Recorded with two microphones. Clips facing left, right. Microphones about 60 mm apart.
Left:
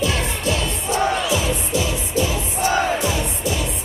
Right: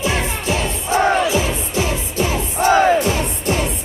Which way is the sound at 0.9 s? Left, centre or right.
Right.